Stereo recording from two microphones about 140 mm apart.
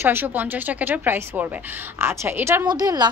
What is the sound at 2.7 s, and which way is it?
Speech, 30° right (ahead or behind).